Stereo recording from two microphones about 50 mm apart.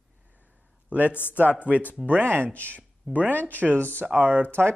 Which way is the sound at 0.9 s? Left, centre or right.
Right.